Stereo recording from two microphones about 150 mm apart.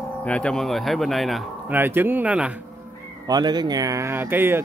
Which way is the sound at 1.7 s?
15° right (ahead or behind).